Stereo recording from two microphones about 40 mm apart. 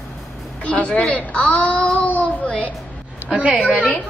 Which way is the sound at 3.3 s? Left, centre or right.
Centre.